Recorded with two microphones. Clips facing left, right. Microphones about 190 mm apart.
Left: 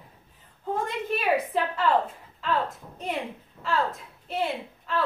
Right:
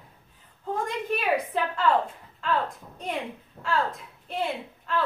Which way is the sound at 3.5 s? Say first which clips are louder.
Even; 50° right (ahead or behind).